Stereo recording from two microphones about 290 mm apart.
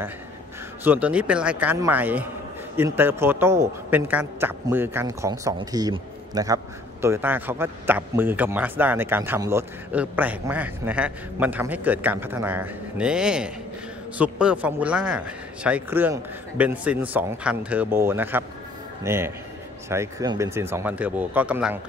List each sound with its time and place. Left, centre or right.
0.8 s a man's voice: centre